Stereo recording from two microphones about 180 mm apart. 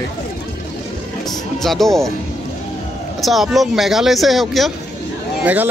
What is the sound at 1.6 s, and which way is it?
Speech, centre (ahead or behind).